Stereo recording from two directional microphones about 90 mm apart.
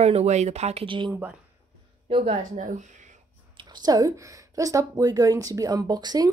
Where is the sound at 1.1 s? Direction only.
20° right (ahead or behind).